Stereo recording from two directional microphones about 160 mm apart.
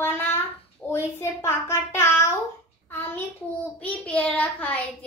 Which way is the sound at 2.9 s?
10° left (ahead or behind).